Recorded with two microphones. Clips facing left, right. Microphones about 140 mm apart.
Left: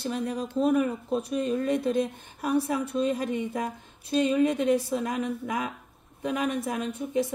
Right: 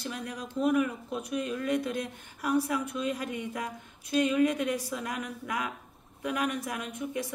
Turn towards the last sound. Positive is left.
turn(degrees=30)  # may be behind; listen again after turning